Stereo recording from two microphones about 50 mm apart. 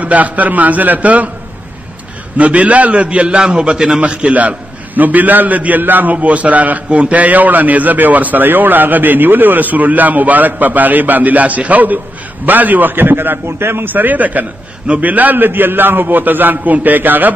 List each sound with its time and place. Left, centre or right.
0.0 s a man's voice: right
2.3 s a man's voice: right
6.1 s a man's voice: right